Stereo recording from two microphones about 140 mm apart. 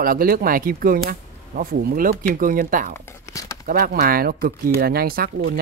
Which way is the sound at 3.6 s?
90° right.